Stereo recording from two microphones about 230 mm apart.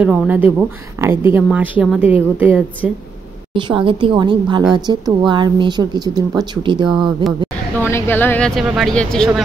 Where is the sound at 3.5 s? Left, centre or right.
Right.